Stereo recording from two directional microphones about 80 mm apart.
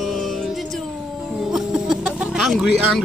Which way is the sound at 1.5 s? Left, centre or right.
Centre.